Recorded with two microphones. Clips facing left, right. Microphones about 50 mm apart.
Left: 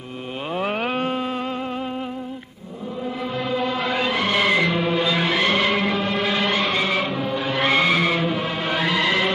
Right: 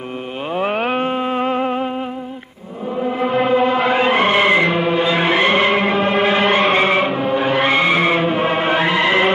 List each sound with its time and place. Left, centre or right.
0.6 s music: centre
3.0 s music: right
7.6 s skidding: centre